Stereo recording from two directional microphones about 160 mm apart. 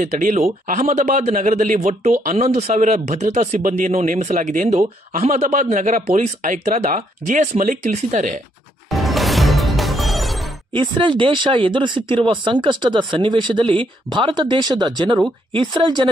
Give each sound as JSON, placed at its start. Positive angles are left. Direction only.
{"t": 0.0, "sound": "speech", "side_deg": -50}
{"t": 8.9, "sound": "music", "side_deg": 0}
{"t": 10.7, "sound": "speech", "side_deg": -30}